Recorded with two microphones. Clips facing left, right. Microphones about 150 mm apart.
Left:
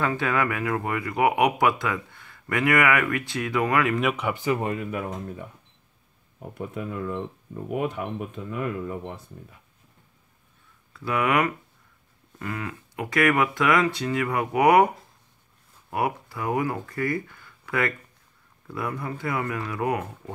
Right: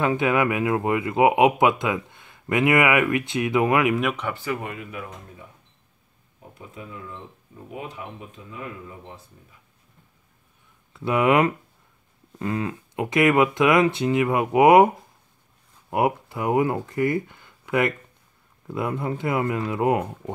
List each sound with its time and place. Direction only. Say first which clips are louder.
0.0 s speech: right 4 dB; 20° right (ahead or behind)
3.9 s speech: right 1 dB; centre (ahead or behind)
4.3 s speech: left 3 dB; 20° left (ahead or behind)
4.6 s speech: left 5 dB; 35° left (ahead or behind)
6.5 s speech: left 8 dB; 55° left (ahead or behind)
10.9 s speech: right 5 dB; 25° right (ahead or behind)
15.9 s speech: right 4 dB; 20° right (ahead or behind)